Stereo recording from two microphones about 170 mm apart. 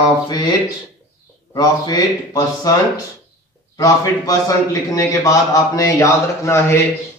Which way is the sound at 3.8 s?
20° left (ahead or behind).